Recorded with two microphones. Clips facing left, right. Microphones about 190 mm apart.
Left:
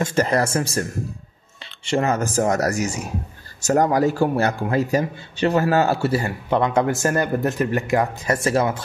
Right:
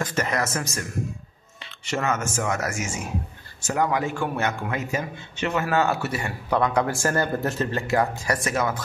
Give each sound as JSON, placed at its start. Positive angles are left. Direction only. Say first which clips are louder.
{"t": 0.0, "sound": "speech", "louder": "left 6 dB", "side_deg": 30}
{"t": 1.9, "sound": "a man's voice", "louder": "left 5 dB", "side_deg": 30}